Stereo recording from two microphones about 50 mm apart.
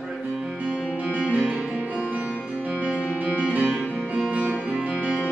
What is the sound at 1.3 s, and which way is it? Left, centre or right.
Music, right.